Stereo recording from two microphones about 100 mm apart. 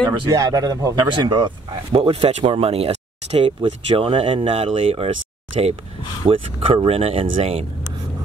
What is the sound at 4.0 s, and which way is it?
Speech, 60° right (ahead or behind).